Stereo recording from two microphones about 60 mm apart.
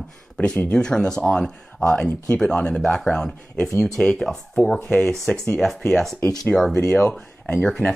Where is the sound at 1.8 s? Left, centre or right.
Left; by 6.8 s centre.